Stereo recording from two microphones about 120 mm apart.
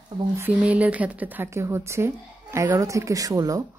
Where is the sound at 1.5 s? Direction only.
25° right (ahead or behind).